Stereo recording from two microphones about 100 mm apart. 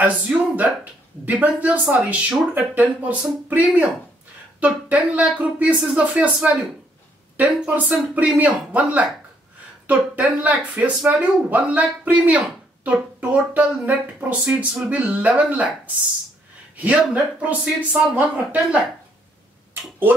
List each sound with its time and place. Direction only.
0.0 s speech: 15° right (ahead or behind)